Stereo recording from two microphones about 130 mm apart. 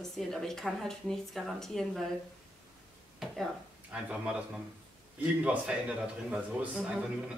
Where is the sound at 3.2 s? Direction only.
Centre (ahead or behind).